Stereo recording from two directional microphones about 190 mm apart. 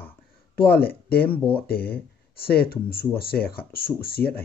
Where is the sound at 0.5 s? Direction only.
55° left (ahead or behind).